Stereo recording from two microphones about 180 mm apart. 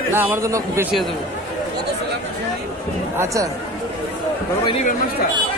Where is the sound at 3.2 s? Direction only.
15° right (ahead or behind).